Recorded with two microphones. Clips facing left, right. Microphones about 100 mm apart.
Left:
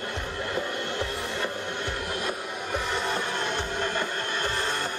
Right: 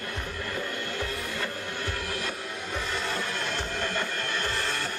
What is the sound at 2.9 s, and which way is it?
Music, 20° left (ahead or behind).